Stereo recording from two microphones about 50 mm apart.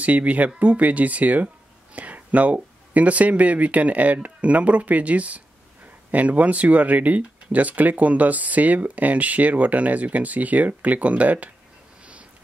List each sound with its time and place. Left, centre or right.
0.0 s speech: right